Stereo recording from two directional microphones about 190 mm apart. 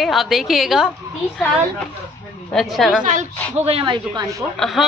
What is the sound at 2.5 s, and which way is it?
Speech, centre (ahead or behind).